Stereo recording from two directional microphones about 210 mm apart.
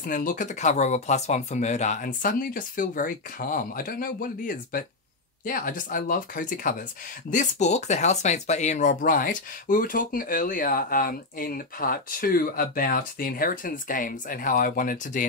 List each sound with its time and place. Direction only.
0.0 s speech: 40° left (ahead or behind)